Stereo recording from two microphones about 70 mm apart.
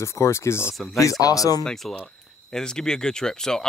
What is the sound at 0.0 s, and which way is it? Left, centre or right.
Speech, left.